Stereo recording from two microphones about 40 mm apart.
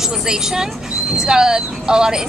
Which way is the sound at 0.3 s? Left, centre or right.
Centre.